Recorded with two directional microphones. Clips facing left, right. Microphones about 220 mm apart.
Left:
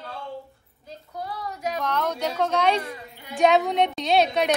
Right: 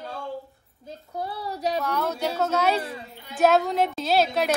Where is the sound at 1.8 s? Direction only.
10° right (ahead or behind).